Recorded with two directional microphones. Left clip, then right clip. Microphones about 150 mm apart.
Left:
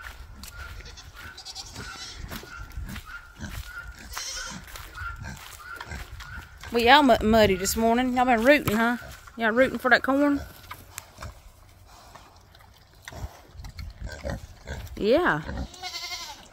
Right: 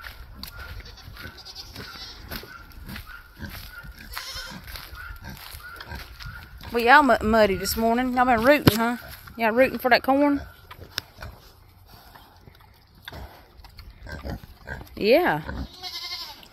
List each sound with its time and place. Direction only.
1.3 s goat: 25° left (ahead or behind)
3.4 s pig: 25° left (ahead or behind)
4.3 s goat: 20° left (ahead or behind)
4.6 s goose: 50° right (ahead or behind)
6.7 s speech: 15° left (ahead or behind)
8.4 s speech: 5° left (ahead or behind)
15.0 s speech: 10° right (ahead or behind)